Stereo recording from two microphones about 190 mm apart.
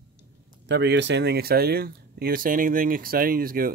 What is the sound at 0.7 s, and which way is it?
Speech, 65° right (ahead or behind).